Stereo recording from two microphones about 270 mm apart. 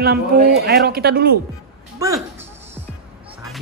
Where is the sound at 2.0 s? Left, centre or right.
Centre.